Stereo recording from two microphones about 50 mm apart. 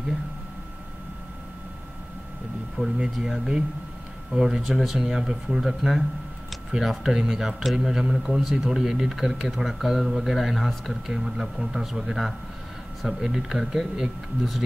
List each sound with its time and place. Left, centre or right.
3.0 s speech: centre